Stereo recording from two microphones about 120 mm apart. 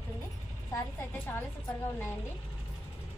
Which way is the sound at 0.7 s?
15° left (ahead or behind).